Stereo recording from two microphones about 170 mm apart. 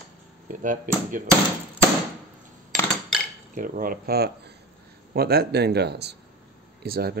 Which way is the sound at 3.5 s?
55° right (ahead or behind).